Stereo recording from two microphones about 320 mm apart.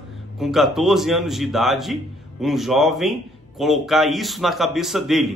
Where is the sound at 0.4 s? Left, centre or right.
Centre.